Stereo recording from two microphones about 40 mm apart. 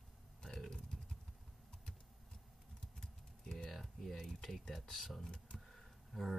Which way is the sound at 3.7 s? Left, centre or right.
Centre.